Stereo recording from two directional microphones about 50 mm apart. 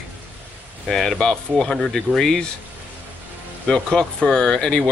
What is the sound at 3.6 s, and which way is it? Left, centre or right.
Speech, centre.